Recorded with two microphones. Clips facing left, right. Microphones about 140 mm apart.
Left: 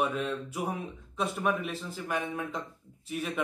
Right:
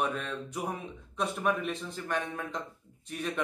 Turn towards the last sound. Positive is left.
turn(degrees=5)  # may be behind; listen again after turning